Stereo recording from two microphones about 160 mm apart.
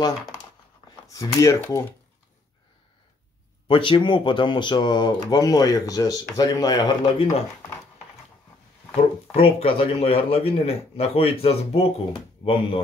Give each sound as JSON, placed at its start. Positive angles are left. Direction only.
{"t": 1.0, "sound": "speech", "side_deg": 20}
{"t": 3.6, "sound": "speech", "side_deg": 30}
{"t": 9.3, "sound": "a man's voice", "side_deg": 35}